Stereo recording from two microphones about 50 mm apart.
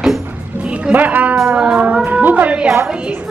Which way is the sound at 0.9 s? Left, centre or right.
Right.